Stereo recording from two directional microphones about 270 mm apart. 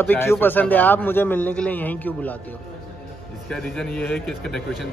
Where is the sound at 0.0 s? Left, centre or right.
Centre.